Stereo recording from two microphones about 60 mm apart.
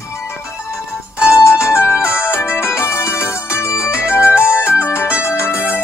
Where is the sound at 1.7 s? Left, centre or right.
Left.